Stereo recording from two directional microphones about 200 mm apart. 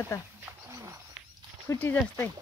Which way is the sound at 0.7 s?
15° right (ahead or behind).